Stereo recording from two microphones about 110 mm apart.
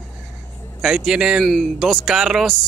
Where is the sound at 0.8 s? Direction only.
5° right (ahead or behind).